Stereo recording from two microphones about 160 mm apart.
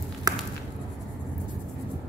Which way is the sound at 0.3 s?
25° right (ahead or behind).